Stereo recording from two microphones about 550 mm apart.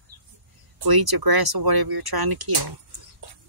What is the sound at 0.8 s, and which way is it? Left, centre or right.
Speech, right.